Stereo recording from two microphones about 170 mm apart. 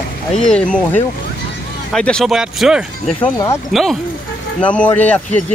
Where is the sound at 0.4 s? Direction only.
5° left (ahead or behind).